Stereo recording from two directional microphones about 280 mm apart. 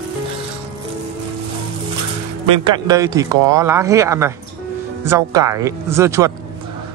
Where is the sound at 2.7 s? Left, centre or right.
Centre.